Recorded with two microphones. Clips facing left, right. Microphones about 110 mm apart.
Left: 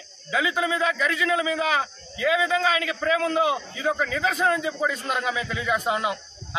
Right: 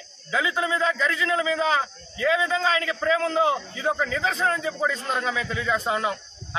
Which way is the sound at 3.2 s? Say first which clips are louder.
Left 1 dB; 30° right (ahead or behind).